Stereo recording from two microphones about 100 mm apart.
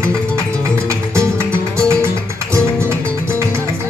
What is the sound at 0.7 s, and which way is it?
Music, 30° right (ahead or behind).